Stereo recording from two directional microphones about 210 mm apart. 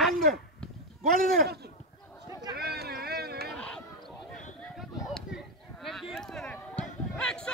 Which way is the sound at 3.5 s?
5° left (ahead or behind).